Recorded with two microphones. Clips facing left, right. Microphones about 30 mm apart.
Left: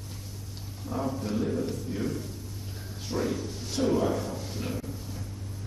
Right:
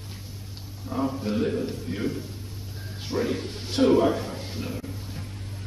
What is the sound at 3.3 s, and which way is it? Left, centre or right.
Speech, right.